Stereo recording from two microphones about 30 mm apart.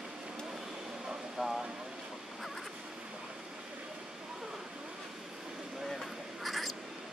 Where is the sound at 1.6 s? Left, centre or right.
Right.